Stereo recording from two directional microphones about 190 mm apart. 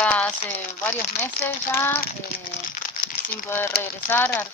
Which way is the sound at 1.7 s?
15° left (ahead or behind).